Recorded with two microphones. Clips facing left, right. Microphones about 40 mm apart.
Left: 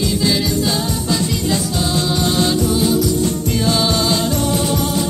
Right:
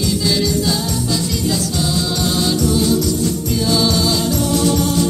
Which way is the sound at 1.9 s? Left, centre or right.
Left.